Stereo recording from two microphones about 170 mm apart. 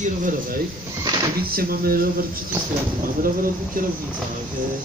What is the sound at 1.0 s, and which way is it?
Speech, 25° right (ahead or behind).